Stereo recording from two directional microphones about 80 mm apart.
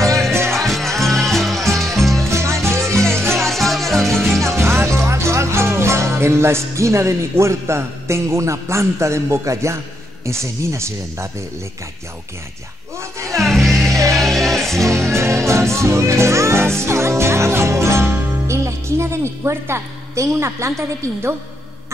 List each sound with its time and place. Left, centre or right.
0.3 s music: right
0.6 s music: centre
2.3 s music: right
3.3 s music: centre
4.5 s speech: right
13.4 s music: centre
13.8 s music: right
14.1 s music: centre
15.1 s music: right